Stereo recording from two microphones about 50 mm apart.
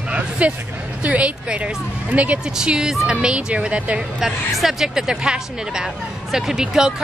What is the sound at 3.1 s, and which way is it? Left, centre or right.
Speech, right.